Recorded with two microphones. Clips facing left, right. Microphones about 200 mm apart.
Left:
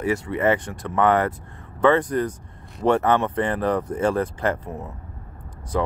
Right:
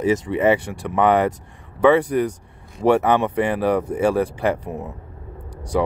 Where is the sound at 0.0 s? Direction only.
15° right (ahead or behind).